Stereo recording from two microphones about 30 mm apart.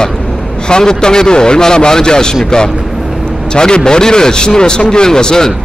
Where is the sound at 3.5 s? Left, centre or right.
Left.